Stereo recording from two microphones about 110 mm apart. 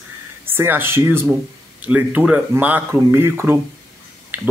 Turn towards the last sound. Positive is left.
turn(degrees=-20)  # may be behind; listen again after turning